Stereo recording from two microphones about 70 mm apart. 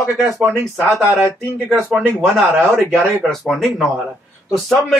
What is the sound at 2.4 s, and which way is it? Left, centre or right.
Speech, right.